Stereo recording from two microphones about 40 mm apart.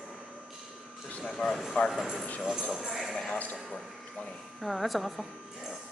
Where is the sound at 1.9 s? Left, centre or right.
Centre.